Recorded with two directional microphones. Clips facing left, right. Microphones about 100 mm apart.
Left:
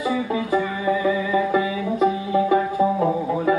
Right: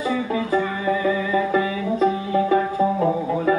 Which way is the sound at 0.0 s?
20° left (ahead or behind).